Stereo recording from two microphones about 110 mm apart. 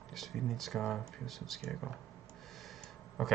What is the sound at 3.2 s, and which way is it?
Speech, centre (ahead or behind).